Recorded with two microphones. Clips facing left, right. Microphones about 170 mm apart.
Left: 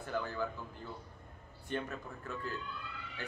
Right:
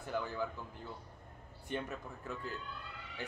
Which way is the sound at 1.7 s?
15° right (ahead or behind).